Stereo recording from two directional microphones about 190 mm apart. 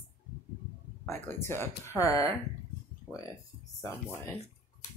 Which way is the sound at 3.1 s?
5° right (ahead or behind).